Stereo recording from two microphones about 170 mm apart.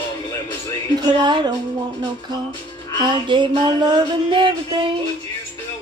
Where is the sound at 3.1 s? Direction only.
25° right (ahead or behind).